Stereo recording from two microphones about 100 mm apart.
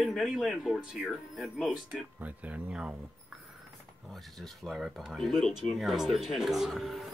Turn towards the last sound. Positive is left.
turn(degrees=0)  # may be behind; listen again after turning